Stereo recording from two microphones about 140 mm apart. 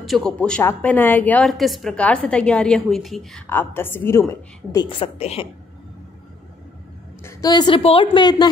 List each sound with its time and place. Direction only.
0.0 s speech: centre (ahead or behind)
1.4 s a woman's voice: centre (ahead or behind)
3.4 s speech: 15° left (ahead or behind)
4.8 s a woman's voice: 45° left (ahead or behind)
7.2 s a woman's voice: 30° left (ahead or behind)